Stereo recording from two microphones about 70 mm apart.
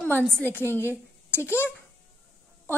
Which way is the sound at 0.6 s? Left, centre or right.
Left.